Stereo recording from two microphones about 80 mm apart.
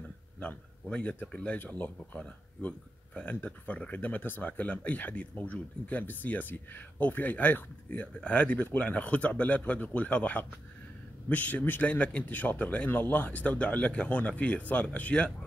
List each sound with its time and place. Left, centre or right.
0.4 s speech: centre
3.4 s a man's voice: centre